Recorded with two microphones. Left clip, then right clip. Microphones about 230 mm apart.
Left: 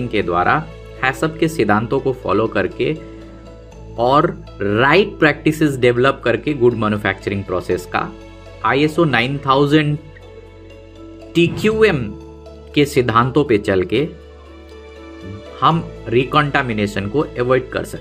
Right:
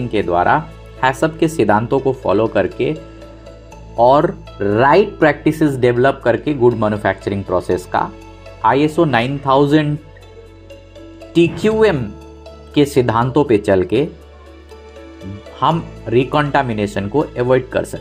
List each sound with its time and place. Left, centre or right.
0.1 s speech: centre
4.8 s speech: centre
5.5 s speech: centre
11.3 s speech: centre
15.6 s speech: centre